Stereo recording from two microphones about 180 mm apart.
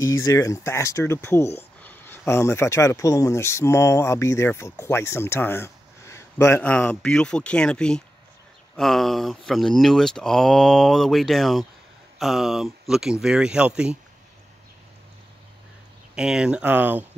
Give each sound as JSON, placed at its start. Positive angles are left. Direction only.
{"t": 0.0, "sound": "speech", "side_deg": 20}
{"t": 16.2, "sound": "speech", "side_deg": -5}